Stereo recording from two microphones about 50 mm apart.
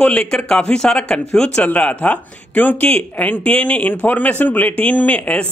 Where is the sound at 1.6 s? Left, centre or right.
Left.